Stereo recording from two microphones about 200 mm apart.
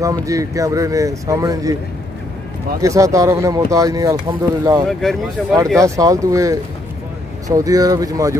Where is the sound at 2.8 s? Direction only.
15° right (ahead or behind).